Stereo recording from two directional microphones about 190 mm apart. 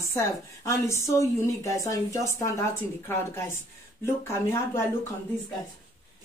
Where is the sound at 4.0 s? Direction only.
15° left (ahead or behind).